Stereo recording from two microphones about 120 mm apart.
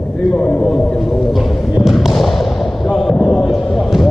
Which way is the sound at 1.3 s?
Centre (ahead or behind).